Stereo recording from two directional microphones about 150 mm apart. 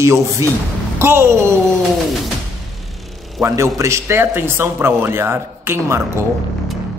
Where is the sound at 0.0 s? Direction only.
20° right (ahead or behind).